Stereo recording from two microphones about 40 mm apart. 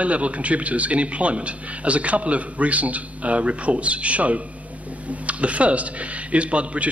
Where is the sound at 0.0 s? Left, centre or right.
Right.